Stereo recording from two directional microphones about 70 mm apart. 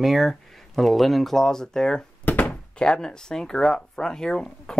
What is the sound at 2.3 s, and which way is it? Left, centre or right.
Speech, left.